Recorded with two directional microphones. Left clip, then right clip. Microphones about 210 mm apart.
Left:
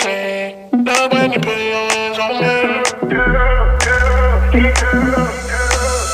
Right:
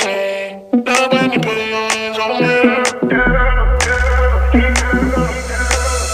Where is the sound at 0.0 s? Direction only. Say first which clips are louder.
Right 1 dB; centre (ahead or behind).